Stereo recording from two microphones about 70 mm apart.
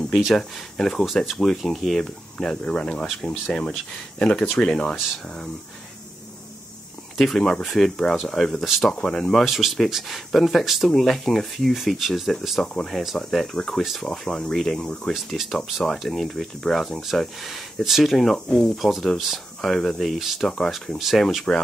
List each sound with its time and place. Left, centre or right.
0.2 s speech: centre
2.3 s speech: centre
7.2 s speech: centre
8.9 s speech: centre